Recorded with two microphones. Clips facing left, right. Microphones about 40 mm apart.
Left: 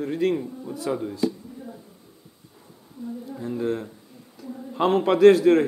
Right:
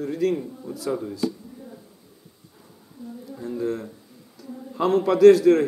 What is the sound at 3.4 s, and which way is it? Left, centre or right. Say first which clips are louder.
Speech: even; left.